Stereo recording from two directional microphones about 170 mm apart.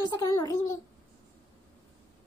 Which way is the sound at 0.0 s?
20° left (ahead or behind).